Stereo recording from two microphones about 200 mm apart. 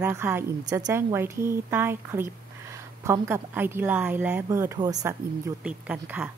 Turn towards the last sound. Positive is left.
turn(degrees=-5)  # may be behind; listen again after turning